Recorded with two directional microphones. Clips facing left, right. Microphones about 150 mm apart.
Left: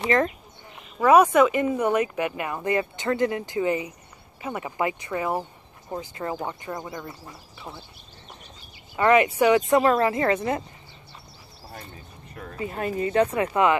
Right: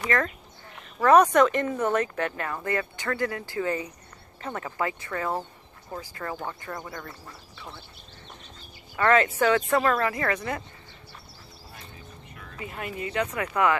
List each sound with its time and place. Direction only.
0.0 s speech: 25° left (ahead or behind)
8.9 s speech: 15° left (ahead or behind)
12.4 s speech: 35° left (ahead or behind)